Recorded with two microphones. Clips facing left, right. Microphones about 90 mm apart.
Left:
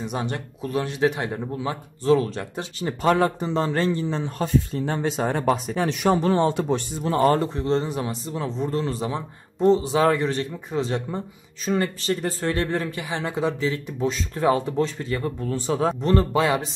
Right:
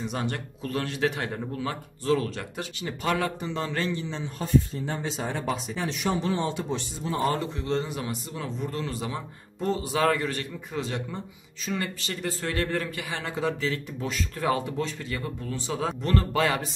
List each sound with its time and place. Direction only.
0.0 s speech: 20° left (ahead or behind); by 4.3 s 45° left (ahead or behind)
4.4 s speech: 65° left (ahead or behind)
7.5 s speech: 35° left (ahead or behind)
16.0 s speech: 25° left (ahead or behind)